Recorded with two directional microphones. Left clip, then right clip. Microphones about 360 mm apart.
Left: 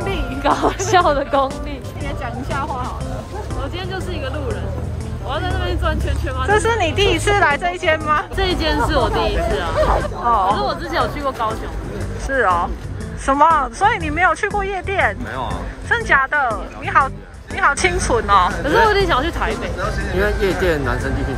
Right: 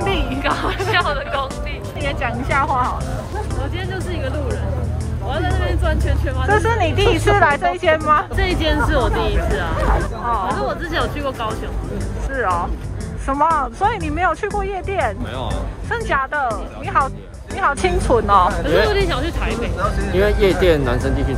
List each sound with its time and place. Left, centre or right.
0.0 s speech: centre
2.5 s speech: centre
3.9 s speech: centre
8.4 s speech: centre
9.0 s speech: left
10.3 s speech: centre
18.9 s speech: centre